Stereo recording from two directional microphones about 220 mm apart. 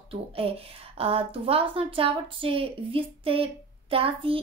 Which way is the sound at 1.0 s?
25° right (ahead or behind).